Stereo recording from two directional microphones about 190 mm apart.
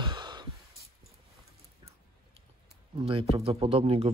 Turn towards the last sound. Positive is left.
turn(degrees=-30)  # may be behind; listen again after turning